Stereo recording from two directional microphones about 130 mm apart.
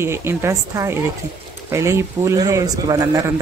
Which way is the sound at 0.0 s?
20° right (ahead or behind).